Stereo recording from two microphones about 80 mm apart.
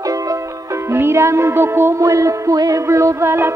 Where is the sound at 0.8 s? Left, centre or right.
Right.